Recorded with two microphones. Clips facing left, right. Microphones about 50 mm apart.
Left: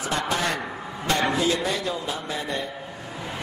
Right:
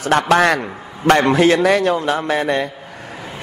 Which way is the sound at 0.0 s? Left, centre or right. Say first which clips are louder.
Right 12 dB; right.